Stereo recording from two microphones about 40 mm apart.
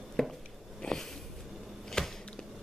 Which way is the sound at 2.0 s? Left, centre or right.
Centre.